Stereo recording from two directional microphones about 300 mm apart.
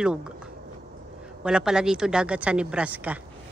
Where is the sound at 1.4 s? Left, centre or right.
Centre.